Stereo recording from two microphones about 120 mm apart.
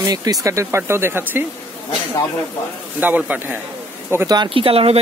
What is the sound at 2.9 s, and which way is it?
Speech, 15° right (ahead or behind).